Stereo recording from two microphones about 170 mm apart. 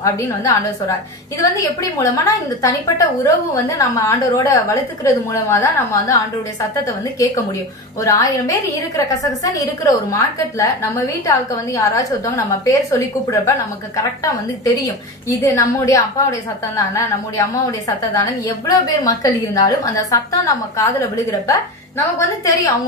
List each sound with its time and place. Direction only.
0.0 s a woman's voice: 20° left (ahead or behind)
8.0 s a woman's voice: 20° left (ahead or behind)